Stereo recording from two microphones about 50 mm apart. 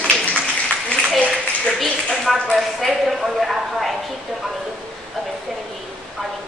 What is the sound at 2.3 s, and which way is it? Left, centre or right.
A woman's voice, centre.